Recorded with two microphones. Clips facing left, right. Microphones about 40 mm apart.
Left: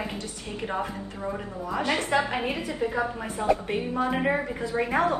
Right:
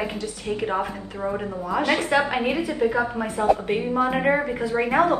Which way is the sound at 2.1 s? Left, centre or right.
Right.